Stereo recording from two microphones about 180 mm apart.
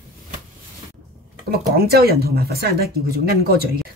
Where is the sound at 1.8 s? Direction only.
60° right (ahead or behind).